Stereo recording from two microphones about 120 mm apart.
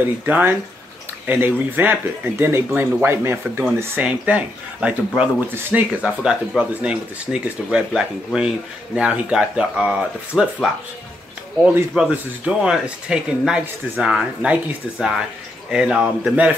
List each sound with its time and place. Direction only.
0.3 s speech: 15° right (ahead or behind)